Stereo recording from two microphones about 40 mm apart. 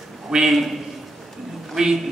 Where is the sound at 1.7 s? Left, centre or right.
Centre.